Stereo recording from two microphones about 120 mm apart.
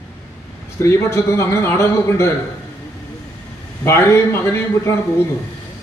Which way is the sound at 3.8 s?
20° left (ahead or behind).